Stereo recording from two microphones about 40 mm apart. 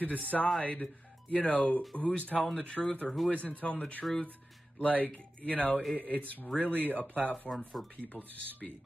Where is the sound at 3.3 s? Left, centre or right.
Left.